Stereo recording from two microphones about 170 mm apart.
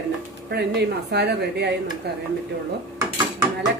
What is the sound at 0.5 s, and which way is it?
A woman's voice, 80° right.